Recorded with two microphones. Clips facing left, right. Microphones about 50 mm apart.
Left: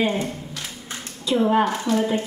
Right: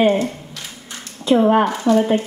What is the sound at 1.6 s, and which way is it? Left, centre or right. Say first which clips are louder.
Speech: right 6 dB; centre.